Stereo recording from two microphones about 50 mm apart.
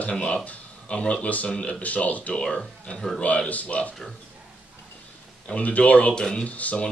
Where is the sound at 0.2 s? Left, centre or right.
Left.